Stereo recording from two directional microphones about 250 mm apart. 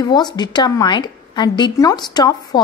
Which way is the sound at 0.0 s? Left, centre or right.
Centre.